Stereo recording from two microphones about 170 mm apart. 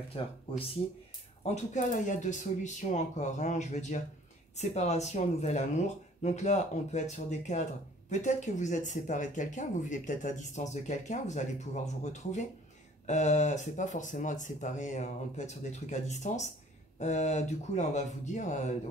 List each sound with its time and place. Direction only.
1.4 s speech: 45° left (ahead or behind)